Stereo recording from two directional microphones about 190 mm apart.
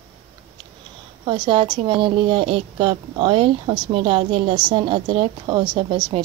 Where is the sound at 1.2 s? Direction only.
25° right (ahead or behind).